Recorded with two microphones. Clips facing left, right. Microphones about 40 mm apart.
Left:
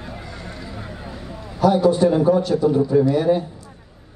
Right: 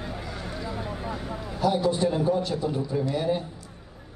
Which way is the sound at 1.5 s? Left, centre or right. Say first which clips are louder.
Left 8 dB; left.